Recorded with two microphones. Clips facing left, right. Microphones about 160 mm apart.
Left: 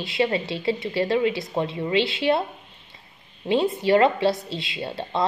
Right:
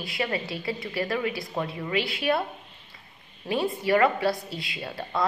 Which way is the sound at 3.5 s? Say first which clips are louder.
Left 5 dB; 25° left (ahead or behind).